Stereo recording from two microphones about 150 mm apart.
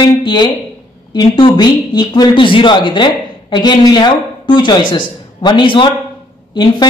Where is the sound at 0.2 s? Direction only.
30° left (ahead or behind).